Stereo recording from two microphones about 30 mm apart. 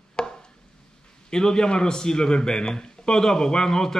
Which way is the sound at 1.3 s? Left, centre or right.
Left.